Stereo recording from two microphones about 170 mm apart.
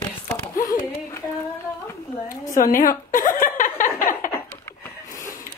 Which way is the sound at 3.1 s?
50° left (ahead or behind).